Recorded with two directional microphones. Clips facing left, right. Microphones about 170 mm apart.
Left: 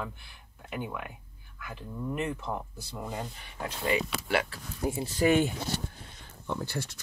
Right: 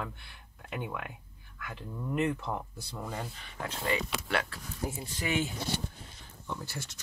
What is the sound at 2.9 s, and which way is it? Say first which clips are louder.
Speech: left 2 dB; 10° left (ahead or behind).